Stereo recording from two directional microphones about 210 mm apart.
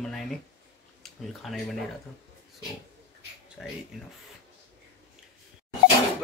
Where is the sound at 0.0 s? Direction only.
Centre (ahead or behind).